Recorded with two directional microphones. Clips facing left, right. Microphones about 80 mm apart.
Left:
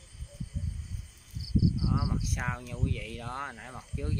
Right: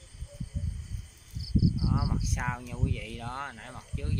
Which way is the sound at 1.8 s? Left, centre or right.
Centre.